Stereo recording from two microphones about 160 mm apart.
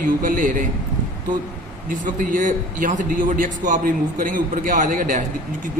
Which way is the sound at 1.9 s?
55° right (ahead or behind).